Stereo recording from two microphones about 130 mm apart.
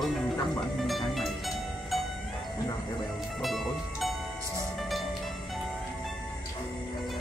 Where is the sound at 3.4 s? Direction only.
Centre (ahead or behind).